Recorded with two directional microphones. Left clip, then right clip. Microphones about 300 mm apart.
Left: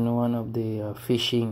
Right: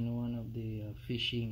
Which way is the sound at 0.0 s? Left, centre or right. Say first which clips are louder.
Left 14 dB; centre.